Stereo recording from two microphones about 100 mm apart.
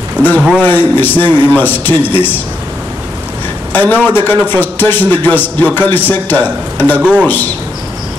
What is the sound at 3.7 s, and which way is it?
A man's voice, 20° left (ahead or behind).